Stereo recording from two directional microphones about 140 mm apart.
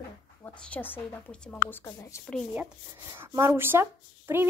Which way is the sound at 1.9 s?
25° left (ahead or behind).